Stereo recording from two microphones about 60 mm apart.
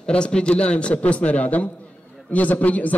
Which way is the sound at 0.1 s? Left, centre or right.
Centre.